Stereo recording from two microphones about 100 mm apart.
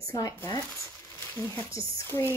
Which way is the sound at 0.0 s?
35° left (ahead or behind).